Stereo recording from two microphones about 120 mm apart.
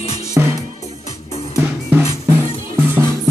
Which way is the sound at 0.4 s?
15° right (ahead or behind).